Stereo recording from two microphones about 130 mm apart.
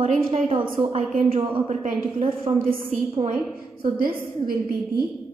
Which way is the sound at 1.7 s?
65° right (ahead or behind).